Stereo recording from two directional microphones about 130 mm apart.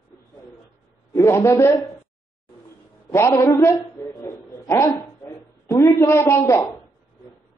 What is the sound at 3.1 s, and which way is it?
Speech, 20° left (ahead or behind).